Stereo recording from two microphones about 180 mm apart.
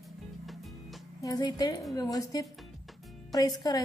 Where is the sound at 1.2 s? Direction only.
20° left (ahead or behind).